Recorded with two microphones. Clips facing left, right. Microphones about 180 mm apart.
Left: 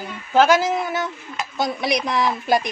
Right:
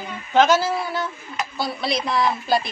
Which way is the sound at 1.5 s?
20° left (ahead or behind).